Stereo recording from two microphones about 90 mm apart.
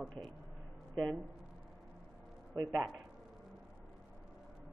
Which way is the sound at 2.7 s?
5° left (ahead or behind).